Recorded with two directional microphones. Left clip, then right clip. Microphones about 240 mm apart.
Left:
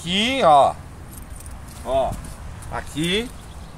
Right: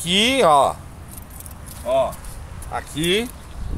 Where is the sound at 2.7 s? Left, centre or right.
Right.